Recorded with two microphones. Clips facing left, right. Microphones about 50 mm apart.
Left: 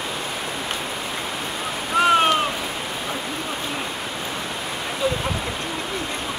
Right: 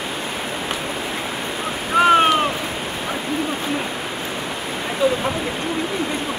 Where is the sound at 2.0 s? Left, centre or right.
Centre.